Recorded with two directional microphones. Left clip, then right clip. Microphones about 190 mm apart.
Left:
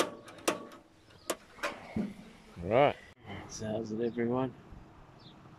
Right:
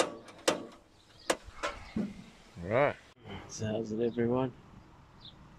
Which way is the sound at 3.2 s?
Centre (ahead or behind).